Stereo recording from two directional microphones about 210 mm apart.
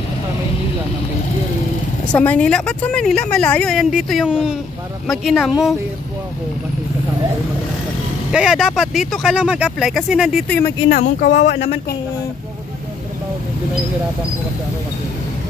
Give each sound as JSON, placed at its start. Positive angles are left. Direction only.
{"t": 2.1, "sound": "a woman's voice", "side_deg": 5}
{"t": 8.3, "sound": "a woman's voice", "side_deg": -5}
{"t": 10.9, "sound": "speech", "side_deg": 40}
{"t": 11.2, "sound": "speech", "side_deg": 55}